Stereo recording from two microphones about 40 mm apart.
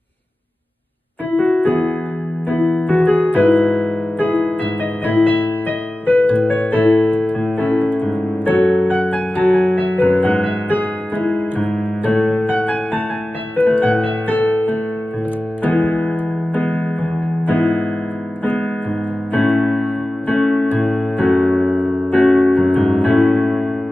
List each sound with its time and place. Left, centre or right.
1.3 s keyboard: left
5.0 s music: left
16.5 s piano: left
18.4 s music: left
23.4 s music: centre